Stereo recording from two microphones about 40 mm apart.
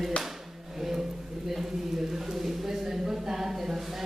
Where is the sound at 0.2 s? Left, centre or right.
Left.